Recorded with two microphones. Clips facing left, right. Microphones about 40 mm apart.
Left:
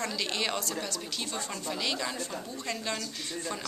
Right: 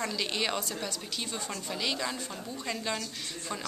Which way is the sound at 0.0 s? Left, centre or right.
Centre.